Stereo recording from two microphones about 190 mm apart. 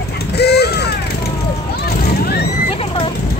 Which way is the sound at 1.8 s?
55° left (ahead or behind).